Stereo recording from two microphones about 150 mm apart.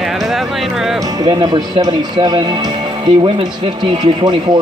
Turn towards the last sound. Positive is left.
turn(degrees=-30)  # may be behind; listen again after turning